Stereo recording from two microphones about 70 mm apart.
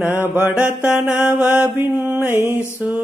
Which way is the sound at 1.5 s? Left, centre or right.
Right.